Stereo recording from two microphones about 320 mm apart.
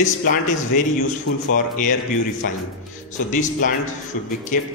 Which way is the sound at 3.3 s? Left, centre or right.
Left.